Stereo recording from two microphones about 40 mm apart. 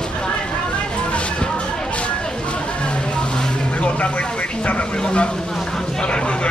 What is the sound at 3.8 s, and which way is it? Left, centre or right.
Vehicle, left.